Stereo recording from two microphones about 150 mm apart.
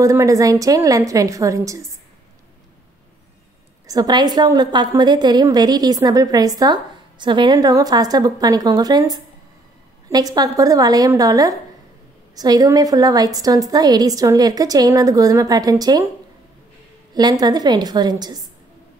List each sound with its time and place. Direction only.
0.0 s a woman's voice: 20° right (ahead or behind)
3.8 s a woman's voice: 25° right (ahead or behind)
17.1 s a woman's voice: 25° right (ahead or behind)